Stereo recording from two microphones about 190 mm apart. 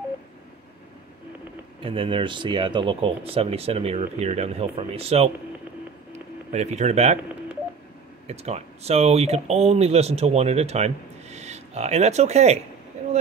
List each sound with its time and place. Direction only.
1.8 s speech: 30° right (ahead or behind)
6.5 s speech: 35° right (ahead or behind)
8.3 s speech: 35° right (ahead or behind)